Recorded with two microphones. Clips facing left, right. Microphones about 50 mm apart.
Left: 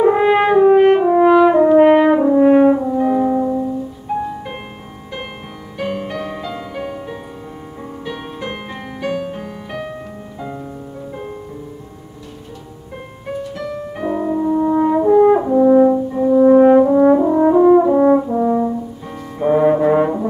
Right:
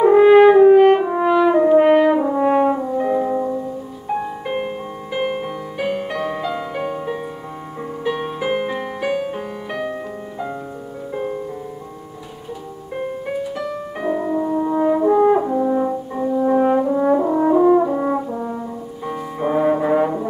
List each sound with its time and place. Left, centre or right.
0.0 s french horn: centre
4.1 s music: centre
13.4 s french horn: centre
19.0 s music: centre